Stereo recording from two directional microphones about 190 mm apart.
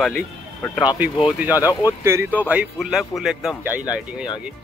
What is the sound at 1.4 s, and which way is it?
Speech, 10° right (ahead or behind).